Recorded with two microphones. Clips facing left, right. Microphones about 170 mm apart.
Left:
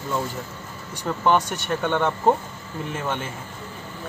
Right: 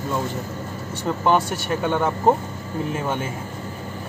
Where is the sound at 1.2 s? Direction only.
5° right (ahead or behind).